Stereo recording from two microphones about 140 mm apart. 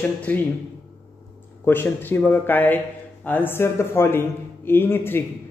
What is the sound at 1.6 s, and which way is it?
A man's voice, 15° left (ahead or behind).